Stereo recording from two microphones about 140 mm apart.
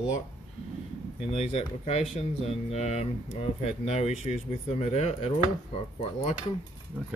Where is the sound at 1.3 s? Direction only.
50° left (ahead or behind).